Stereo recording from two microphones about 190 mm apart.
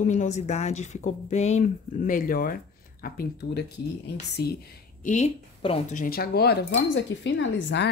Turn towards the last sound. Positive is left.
turn(degrees=70)  # may be behind; listen again after turning